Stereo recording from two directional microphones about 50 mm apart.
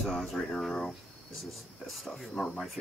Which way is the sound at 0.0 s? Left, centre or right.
Centre.